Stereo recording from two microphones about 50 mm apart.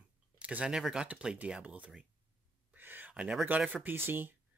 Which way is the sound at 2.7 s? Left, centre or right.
Right.